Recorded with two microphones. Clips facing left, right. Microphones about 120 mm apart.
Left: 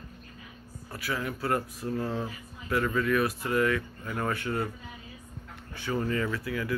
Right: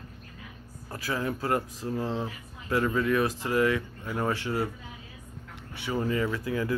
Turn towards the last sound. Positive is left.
turn(degrees=-25)  # may be behind; listen again after turning